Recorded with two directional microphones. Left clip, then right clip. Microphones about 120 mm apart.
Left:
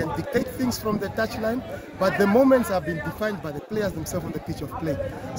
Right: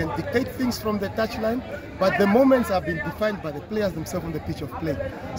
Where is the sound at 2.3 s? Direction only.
15° left (ahead or behind).